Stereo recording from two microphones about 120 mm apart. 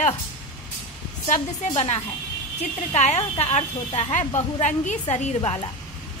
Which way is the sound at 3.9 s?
85° left.